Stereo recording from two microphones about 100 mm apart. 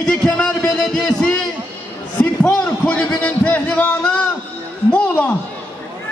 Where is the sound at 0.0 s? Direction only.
5° left (ahead or behind).